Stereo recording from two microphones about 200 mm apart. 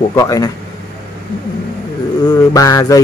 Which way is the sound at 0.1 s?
15° left (ahead or behind).